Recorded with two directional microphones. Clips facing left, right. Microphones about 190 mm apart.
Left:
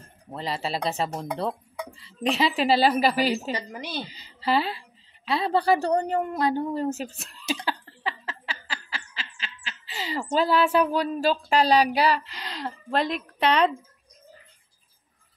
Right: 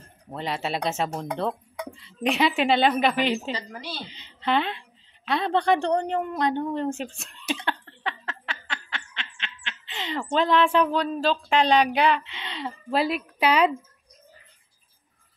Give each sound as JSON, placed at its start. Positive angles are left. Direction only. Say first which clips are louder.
{"t": 0.3, "sound": "a woman's voice", "louder": "right 1 dB", "side_deg": 0}
{"t": 3.5, "sound": "a woman's voice", "louder": "left 3 dB", "side_deg": 20}
{"t": 4.1, "sound": "a woman's voice", "louder": "even", "side_deg": 5}
{"t": 7.6, "sound": "a sound", "louder": "even", "side_deg": 5}
{"t": 10.3, "sound": "a woman's voice", "louder": "even", "side_deg": 5}